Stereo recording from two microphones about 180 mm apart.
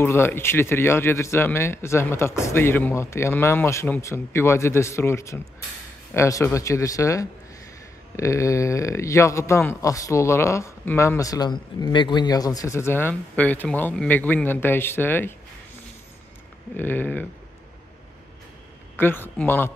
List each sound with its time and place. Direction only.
0.0 s speech: 15° left (ahead or behind)
16.7 s speech: 10° left (ahead or behind)
18.9 s speech: 10° left (ahead or behind)